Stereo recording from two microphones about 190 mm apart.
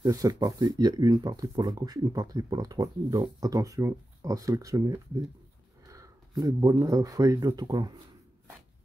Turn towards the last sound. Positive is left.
turn(degrees=-20)  # may be behind; listen again after turning